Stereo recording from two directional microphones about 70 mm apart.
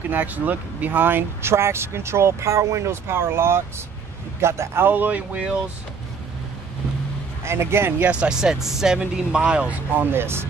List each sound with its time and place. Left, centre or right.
0.1 s speech: right
7.4 s speech: right
8.1 s speech: centre; by 10.4 s right